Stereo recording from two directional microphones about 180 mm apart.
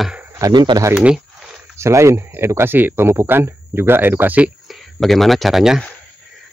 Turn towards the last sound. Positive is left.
turn(degrees=0)  # may be behind; listen again after turning